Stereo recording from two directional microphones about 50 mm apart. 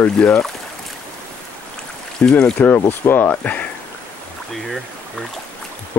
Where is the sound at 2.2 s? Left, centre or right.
Centre.